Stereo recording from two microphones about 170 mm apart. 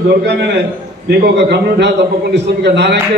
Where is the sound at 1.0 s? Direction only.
75° right (ahead or behind).